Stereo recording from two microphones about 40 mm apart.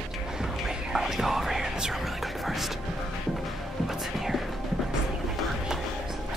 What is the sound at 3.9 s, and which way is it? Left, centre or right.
Music, centre.